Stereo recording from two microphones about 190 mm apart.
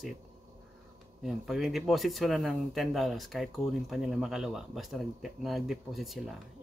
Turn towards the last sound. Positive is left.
turn(degrees=0)  # may be behind; listen again after turning